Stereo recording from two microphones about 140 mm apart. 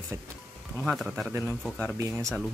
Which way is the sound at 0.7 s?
Centre (ahead or behind).